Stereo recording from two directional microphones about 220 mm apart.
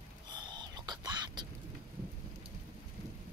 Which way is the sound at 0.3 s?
20° right (ahead or behind).